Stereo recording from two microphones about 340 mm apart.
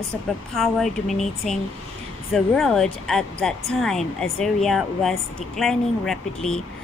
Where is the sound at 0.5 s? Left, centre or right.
Centre.